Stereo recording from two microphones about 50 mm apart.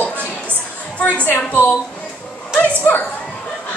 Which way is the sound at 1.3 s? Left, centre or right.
Left.